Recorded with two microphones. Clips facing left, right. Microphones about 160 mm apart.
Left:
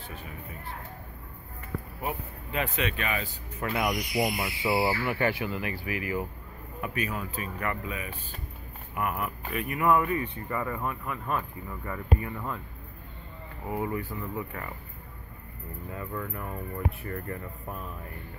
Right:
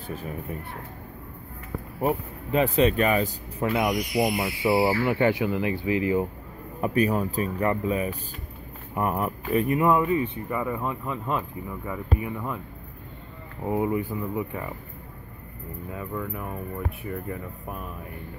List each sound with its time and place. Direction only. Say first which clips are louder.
0.0 s speech: right 7 dB; 45° right (ahead or behind)
2.0 s speech: right 11 dB; 35° right (ahead or behind)
3.6 s speech: right 5 dB; 20° right (ahead or behind)
6.8 s speech: right 10 dB; 35° right (ahead or behind); by 12.5 s 15° right (ahead or behind)
13.7 s speech: right 6 dB; 20° right (ahead or behind)
15.9 s speech: right 3 dB; 10° right (ahead or behind)